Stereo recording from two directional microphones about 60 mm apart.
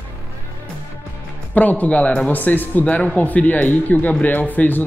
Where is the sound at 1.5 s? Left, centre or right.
Left.